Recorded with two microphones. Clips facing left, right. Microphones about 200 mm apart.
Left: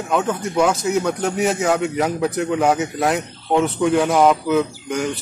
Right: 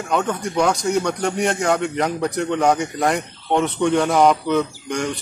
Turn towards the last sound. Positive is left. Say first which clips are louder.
# left 1 dB
turn(degrees=5)  # may be behind; listen again after turning